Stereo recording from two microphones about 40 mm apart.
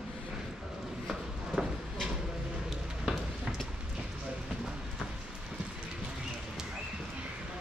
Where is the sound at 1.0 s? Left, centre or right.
Centre.